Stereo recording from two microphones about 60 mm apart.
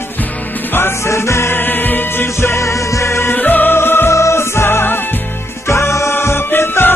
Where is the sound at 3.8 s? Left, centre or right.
Left.